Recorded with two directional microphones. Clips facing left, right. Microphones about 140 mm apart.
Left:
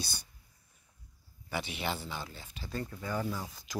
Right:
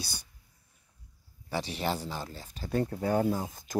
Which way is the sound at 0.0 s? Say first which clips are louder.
Even; 10° right (ahead or behind).